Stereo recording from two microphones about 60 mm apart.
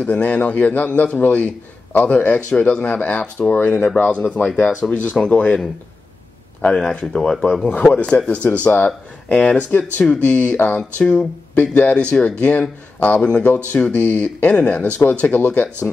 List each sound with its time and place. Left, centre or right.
0.0 s speech: left
4.8 s speech: left
5.2 s speech: left
6.6 s speech: centre
7.9 s speech: left